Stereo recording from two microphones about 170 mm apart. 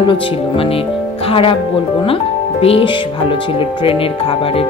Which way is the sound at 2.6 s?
35° left (ahead or behind).